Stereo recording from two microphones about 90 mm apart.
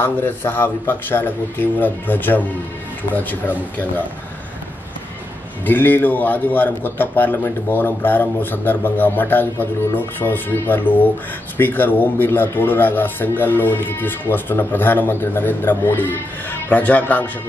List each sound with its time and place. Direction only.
0.0 s speech: 25° left (ahead or behind)
5.7 s speech: 20° left (ahead or behind)